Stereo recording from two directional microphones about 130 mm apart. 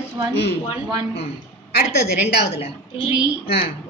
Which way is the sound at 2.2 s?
50° left (ahead or behind).